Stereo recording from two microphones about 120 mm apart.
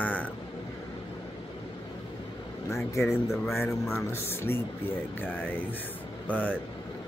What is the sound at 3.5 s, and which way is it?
Speech, 20° left (ahead or behind).